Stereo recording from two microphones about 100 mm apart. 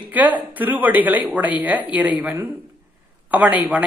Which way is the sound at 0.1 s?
15° right (ahead or behind).